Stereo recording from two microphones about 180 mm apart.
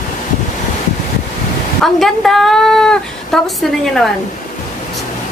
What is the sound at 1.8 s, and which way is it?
A woman's voice, centre (ahead or behind).